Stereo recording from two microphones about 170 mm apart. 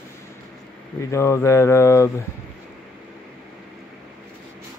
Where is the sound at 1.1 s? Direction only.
15° left (ahead or behind).